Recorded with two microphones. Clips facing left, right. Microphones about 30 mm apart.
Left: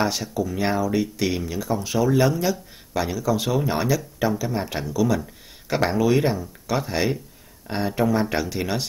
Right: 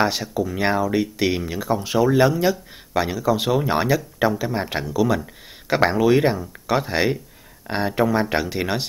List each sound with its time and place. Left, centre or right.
0.0 s speech: right